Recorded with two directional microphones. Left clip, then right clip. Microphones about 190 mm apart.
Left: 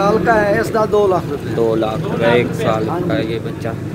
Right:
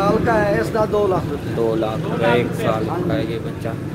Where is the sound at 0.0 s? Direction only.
45° left (ahead or behind).